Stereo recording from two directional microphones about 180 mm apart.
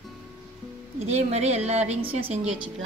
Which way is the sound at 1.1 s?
35° right (ahead or behind).